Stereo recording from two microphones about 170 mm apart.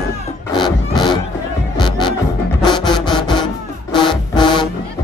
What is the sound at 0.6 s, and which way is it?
Music, 25° left (ahead or behind).